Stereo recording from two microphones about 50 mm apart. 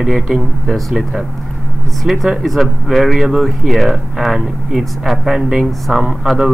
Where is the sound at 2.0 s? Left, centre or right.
Centre.